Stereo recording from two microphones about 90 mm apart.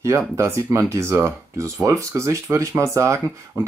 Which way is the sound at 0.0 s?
30° right (ahead or behind).